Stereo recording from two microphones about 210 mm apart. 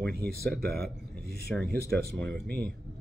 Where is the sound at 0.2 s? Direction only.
50° right (ahead or behind).